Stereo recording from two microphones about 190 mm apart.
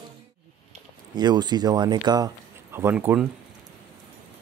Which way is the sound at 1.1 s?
20° right (ahead or behind).